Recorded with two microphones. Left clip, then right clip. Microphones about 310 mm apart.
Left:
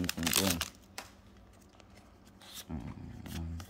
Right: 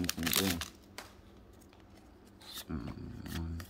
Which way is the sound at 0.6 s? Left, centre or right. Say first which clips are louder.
Left 4 dB; left.